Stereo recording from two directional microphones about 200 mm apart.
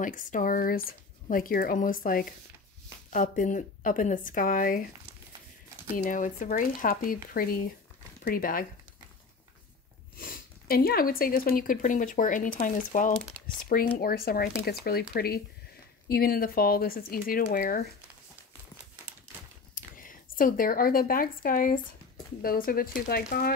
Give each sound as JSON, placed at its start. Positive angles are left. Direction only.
{"t": 0.0, "sound": "speech", "side_deg": 40}
{"t": 5.9, "sound": "speech", "side_deg": 40}
{"t": 10.1, "sound": "speech", "side_deg": 45}
{"t": 19.7, "sound": "speech", "side_deg": 45}